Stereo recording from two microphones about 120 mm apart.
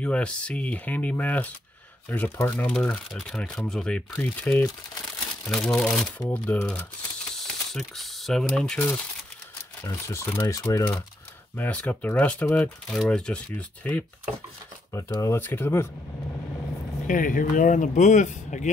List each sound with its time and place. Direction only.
0.0 s speech: 10° left (ahead or behind)
5.5 s speech: 5° left (ahead or behind)
9.8 s speech: 25° left (ahead or behind)
11.5 s speech: 15° left (ahead or behind)
14.9 s speech: 30° left (ahead or behind)
15.3 s speech: 20° left (ahead or behind)
17.1 s speech: 90° left